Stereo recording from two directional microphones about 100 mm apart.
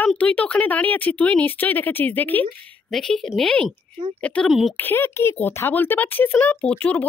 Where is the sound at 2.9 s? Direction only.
5° left (ahead or behind).